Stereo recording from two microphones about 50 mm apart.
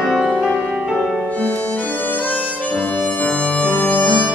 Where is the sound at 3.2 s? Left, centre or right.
Left.